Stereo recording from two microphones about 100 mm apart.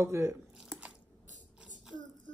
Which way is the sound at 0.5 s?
5° right (ahead or behind).